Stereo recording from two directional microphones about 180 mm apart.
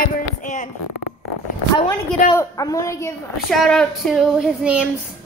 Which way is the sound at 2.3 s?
20° left (ahead or behind).